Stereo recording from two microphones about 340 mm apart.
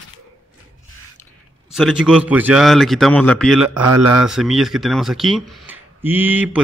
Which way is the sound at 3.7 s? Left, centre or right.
Right.